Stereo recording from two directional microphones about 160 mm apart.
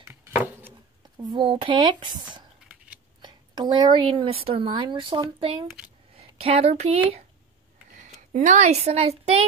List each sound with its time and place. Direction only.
0.1 s chopping: 15° right (ahead or behind)
1.1 s a woman's voice: 30° right (ahead or behind)
8.0 s speech: 50° right (ahead or behind)